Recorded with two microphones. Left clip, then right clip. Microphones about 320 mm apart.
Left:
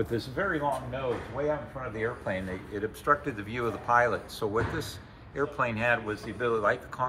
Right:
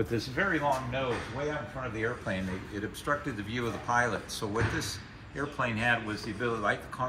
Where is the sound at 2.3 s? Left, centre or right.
Centre.